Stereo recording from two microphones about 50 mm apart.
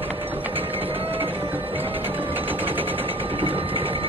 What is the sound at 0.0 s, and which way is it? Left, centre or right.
Printer, right.